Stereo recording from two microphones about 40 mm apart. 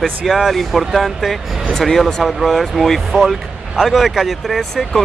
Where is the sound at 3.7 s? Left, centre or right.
Centre.